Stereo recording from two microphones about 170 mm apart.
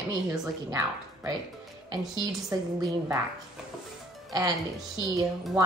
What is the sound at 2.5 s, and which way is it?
Speech, 20° right (ahead or behind).